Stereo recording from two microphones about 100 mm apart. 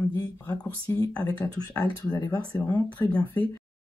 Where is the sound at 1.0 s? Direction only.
40° left (ahead or behind).